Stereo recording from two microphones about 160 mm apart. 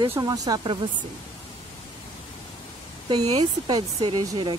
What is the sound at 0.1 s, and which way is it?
Speech, 25° right (ahead or behind).